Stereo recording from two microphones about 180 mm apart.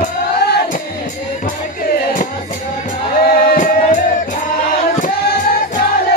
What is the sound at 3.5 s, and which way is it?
Music, 45° left (ahead or behind).